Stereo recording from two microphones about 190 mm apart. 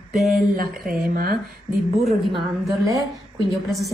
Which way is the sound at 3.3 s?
Centre (ahead or behind).